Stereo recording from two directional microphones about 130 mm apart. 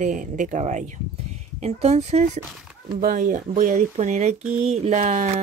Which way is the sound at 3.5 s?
70° right (ahead or behind).